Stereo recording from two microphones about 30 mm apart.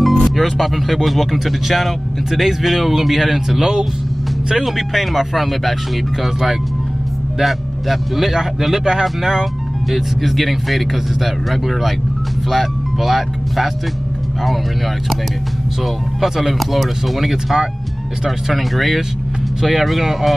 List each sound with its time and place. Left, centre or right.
0.0 s speech: centre
3.4 s speech: centre
4.6 s speech: centre
7.4 s speech: centre
16.2 s speech: centre